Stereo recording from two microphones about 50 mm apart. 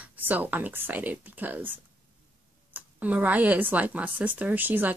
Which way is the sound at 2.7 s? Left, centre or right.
Right.